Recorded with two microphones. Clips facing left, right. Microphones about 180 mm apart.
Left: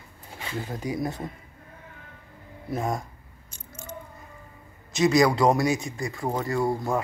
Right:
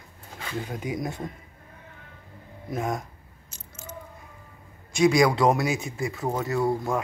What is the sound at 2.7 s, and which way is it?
Speech, centre (ahead or behind).